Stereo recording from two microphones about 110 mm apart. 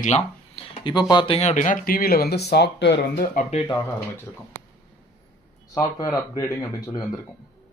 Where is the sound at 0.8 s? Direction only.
40° left (ahead or behind).